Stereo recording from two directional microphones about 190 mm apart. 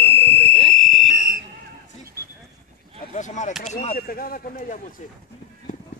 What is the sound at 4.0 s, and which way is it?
Speech, 50° left (ahead or behind).